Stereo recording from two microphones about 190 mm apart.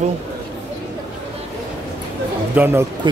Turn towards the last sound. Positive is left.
turn(degrees=-25)  # may be behind; listen again after turning